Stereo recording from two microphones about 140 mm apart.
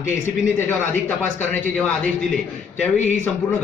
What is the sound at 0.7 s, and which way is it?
A man's voice, 10° left (ahead or behind).